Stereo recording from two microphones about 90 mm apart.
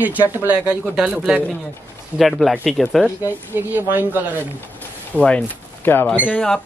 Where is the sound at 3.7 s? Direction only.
20° right (ahead or behind).